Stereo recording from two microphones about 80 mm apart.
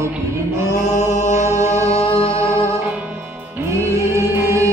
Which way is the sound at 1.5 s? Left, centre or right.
Right.